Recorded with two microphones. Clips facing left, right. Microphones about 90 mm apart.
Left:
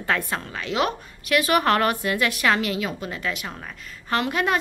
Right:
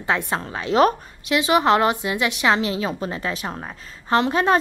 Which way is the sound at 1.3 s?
20° right (ahead or behind).